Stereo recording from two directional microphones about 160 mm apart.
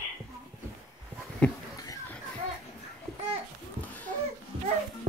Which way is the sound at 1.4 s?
5° left (ahead or behind).